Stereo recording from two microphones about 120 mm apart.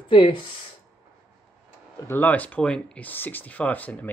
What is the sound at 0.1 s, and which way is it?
Speech, 40° left (ahead or behind).